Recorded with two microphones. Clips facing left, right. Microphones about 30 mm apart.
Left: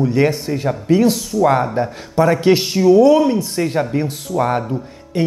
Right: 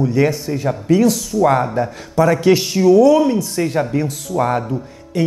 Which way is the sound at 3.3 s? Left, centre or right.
Left.